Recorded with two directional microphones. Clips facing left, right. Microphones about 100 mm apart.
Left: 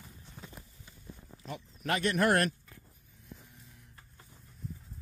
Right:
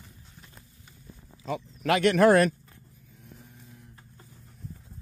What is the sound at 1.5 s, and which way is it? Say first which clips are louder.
Speech: right 8 dB; 90° right.